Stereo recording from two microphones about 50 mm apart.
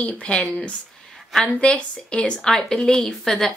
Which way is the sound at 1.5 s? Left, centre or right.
Left.